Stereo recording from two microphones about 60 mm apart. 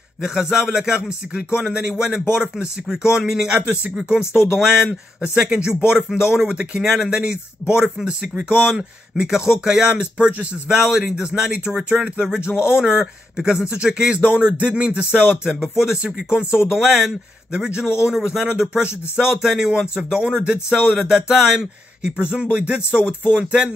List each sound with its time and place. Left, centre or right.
0.2 s speech: centre
23.3 s music: centre